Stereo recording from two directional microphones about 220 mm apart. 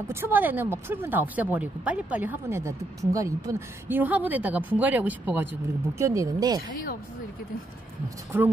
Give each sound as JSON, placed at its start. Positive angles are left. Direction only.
{"t": 0.1, "sound": "speech", "side_deg": -10}
{"t": 8.3, "sound": "speech", "side_deg": -10}